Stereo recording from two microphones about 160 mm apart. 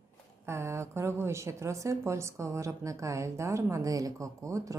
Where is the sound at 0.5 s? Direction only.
15° right (ahead or behind).